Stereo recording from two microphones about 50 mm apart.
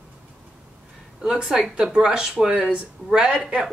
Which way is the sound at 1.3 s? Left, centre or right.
Right.